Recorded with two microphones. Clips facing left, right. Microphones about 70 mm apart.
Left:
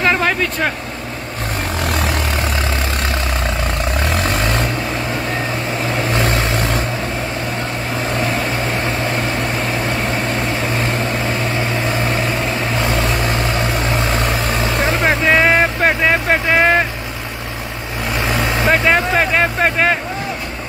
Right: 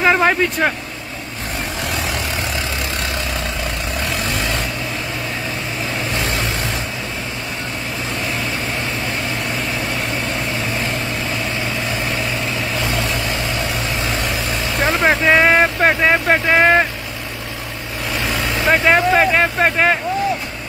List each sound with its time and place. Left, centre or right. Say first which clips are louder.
0.0 s vehicle: right 2 dB; centre
4.3 s vehicle: left 4 dB; left
14.8 s vehicle: right 2 dB; right
15.2 s vehicle: even; centre
18.1 s vehicle: left 3 dB; left
18.7 s speech: right 2 dB; centre